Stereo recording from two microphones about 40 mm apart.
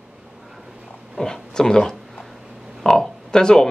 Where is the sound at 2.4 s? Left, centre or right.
Centre.